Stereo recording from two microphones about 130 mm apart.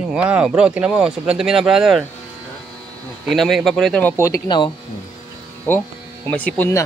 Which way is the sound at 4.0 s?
15° left (ahead or behind).